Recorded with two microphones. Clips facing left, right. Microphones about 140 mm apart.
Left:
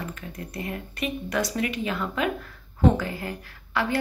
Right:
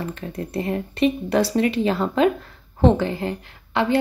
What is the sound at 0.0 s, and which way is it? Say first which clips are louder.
A woman's voice: right 7 dB; 30° right (ahead or behind).